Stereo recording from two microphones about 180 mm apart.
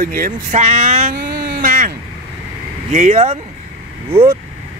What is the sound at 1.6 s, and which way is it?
Speech, 50° right (ahead or behind).